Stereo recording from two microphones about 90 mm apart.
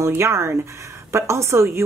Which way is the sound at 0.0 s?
30° right (ahead or behind).